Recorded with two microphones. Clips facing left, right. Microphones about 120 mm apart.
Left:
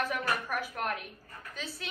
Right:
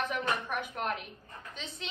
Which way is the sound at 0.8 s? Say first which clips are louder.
Even; 25° right (ahead or behind).